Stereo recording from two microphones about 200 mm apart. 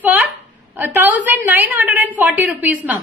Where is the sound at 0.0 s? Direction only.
10° right (ahead or behind).